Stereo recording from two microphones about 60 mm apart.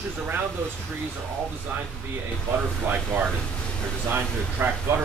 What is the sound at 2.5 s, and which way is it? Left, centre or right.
Speech, right.